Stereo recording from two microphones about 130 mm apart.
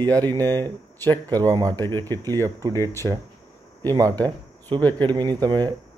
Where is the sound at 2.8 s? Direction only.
20° left (ahead or behind).